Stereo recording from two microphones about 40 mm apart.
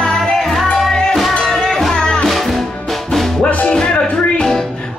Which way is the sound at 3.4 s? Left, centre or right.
Left.